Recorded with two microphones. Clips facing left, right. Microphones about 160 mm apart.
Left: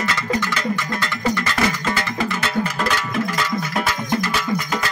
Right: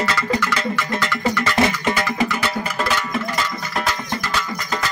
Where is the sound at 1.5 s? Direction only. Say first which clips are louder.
Right 2 dB; 20° right (ahead or behind).